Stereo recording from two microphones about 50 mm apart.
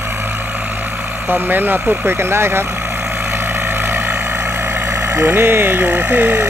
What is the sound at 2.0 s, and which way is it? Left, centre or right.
Speech, right.